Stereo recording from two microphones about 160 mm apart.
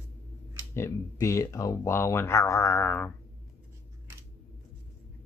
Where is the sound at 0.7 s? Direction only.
15° left (ahead or behind).